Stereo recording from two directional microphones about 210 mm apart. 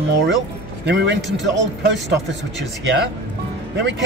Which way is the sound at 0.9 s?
55° right (ahead or behind).